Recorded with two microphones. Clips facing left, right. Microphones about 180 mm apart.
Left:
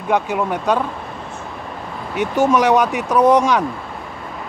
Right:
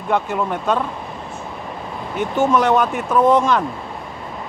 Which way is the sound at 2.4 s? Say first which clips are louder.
Left 1 dB; 20° left (ahead or behind).